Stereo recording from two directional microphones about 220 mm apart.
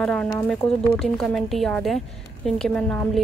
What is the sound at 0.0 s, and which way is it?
Speech, 5° left (ahead or behind).